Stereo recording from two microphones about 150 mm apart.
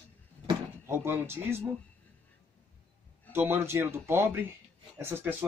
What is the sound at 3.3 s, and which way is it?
Speech, 15° right (ahead or behind).